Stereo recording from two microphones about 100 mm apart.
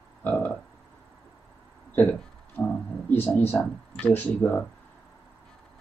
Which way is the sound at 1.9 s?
20° left (ahead or behind).